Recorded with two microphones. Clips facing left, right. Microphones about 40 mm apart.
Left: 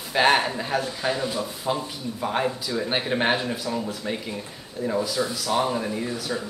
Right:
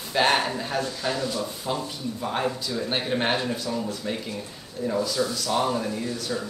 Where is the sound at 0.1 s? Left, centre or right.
Centre.